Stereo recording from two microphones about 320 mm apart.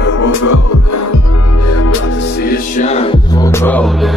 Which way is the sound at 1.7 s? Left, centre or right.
Left.